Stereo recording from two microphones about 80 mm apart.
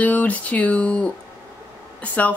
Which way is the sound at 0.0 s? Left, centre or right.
Centre.